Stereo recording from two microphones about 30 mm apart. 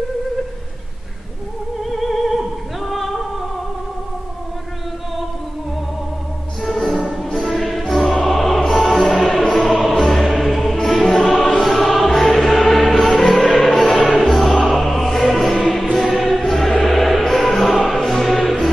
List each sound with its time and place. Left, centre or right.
1.8 s music: centre
6.6 s music: centre